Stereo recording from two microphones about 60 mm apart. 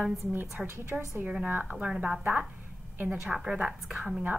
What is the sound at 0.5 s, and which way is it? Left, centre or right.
Speech, right.